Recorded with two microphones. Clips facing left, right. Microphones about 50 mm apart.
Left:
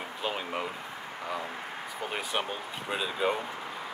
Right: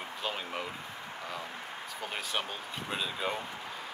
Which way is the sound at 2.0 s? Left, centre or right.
Centre.